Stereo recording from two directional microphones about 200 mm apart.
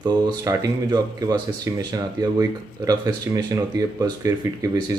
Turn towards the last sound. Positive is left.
turn(degrees=-15)  # may be behind; listen again after turning